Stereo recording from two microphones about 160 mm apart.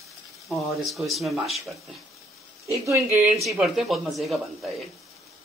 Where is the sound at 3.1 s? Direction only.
20° right (ahead or behind).